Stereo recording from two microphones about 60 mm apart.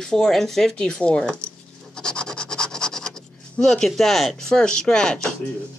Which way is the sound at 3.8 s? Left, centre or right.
Centre.